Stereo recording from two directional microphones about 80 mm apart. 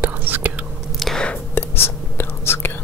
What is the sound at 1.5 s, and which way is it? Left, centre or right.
Whispering, left.